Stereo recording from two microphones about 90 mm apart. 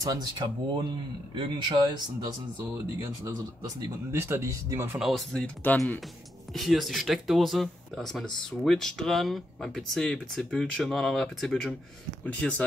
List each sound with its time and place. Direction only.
0.0 s speech: 45° right (ahead or behind)
4.1 s speech: 30° right (ahead or behind)
4.9 s speech: 5° right (ahead or behind)
5.6 s speech: 20° left (ahead or behind)
6.5 s speech: centre (ahead or behind)
12.3 s speech: 15° left (ahead or behind)